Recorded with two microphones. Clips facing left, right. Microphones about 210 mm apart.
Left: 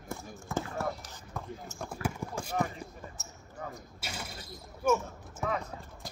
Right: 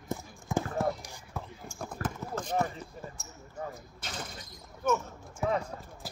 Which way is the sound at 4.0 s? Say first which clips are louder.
Right 1 dB; 10° left (ahead or behind).